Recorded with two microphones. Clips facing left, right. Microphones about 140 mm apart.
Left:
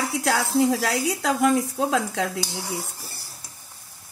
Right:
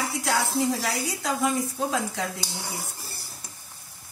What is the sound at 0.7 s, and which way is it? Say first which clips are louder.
A woman's voice: left 4 dB; 70° left (ahead or behind).